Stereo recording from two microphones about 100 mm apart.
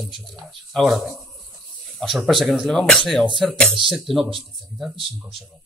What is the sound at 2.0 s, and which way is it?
Speech, centre (ahead or behind).